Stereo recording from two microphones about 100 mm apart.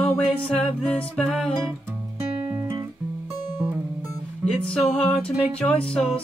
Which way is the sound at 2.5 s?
30° right (ahead or behind).